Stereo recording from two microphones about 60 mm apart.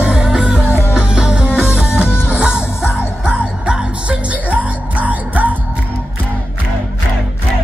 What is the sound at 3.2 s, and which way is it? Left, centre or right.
Music, centre.